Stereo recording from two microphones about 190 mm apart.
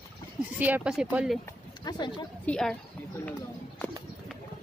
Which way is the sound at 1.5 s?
20° left (ahead or behind).